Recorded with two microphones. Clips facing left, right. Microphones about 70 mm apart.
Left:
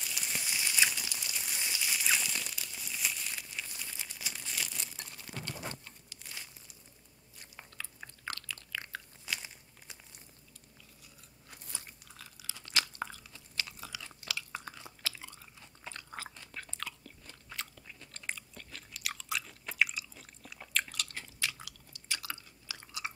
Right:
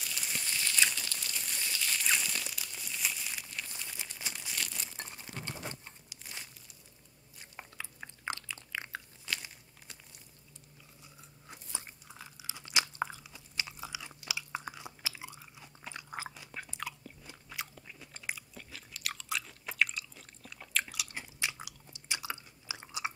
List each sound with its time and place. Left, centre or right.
0.0 s a sound: centre
3.4 s crumpling: centre
4.3 s a sound: centre
4.9 s crumpling: right
6.0 s crumpling: centre
7.5 s biting: centre
9.2 s crunch: centre
11.4 s crunch: right
17.6 s chewing: centre